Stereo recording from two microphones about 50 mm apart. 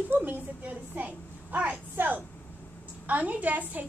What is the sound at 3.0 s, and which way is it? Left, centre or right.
Speech, right.